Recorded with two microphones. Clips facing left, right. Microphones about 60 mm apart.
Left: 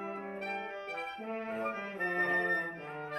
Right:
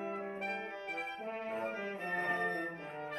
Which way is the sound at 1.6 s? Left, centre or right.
Left.